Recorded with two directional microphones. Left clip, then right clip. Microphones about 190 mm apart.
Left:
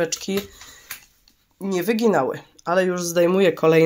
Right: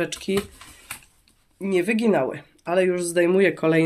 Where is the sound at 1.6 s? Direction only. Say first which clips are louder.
Left 1 dB; 5° left (ahead or behind).